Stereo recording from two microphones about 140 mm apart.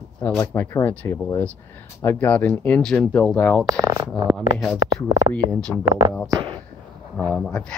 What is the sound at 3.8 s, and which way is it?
Speech, 25° right (ahead or behind).